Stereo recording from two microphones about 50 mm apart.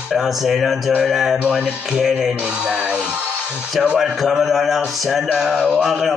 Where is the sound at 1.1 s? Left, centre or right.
Centre.